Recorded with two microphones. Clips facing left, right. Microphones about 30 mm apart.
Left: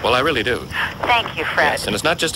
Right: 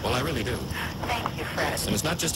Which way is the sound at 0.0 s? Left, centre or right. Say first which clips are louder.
Left 11 dB; left.